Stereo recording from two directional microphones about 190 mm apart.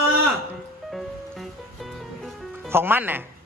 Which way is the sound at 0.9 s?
Centre (ahead or behind).